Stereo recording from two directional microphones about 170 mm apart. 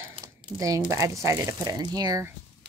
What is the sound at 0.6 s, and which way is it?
Speech, 20° right (ahead or behind).